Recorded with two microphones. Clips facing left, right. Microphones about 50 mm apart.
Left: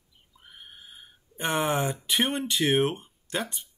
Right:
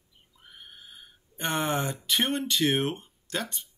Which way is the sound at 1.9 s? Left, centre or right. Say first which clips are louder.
Left 1 dB; centre.